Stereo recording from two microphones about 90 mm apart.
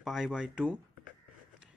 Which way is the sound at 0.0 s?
5° right (ahead or behind).